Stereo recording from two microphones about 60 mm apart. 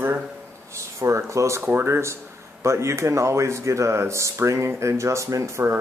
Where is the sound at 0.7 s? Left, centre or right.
Right.